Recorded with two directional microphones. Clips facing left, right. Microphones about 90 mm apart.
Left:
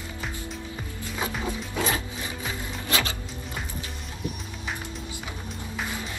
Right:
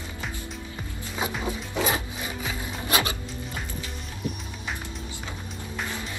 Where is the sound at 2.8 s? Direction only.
20° right (ahead or behind).